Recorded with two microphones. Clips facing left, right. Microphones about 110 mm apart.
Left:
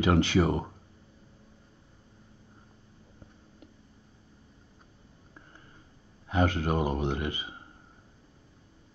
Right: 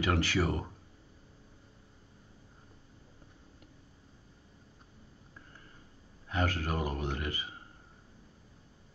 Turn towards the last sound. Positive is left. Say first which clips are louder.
# left 5 dB
turn(degrees=20)  # may be behind; listen again after turning